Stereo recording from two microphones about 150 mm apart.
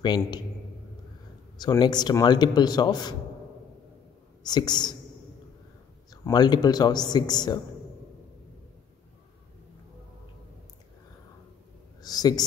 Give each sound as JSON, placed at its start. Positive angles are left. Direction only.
{"t": 0.0, "sound": "a man's voice", "side_deg": 30}
{"t": 1.6, "sound": "a man's voice", "side_deg": 30}
{"t": 4.4, "sound": "a man's voice", "side_deg": 30}
{"t": 6.2, "sound": "a man's voice", "side_deg": 25}
{"t": 12.0, "sound": "speech", "side_deg": 25}